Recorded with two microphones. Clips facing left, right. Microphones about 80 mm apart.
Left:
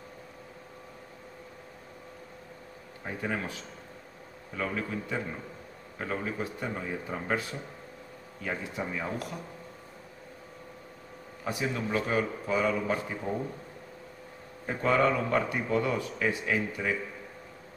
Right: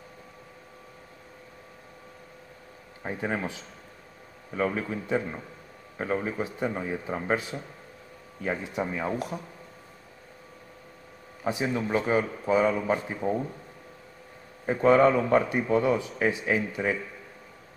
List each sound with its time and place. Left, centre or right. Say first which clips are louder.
3.1 s a man's voice: right 3 dB; right
11.4 s a man's voice: right 4 dB; right
14.7 s a man's voice: right 6 dB; right